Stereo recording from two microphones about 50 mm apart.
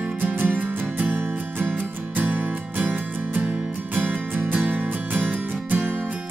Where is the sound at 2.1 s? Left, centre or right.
Right.